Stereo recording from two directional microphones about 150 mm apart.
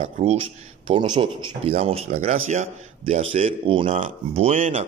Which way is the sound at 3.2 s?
40° right (ahead or behind).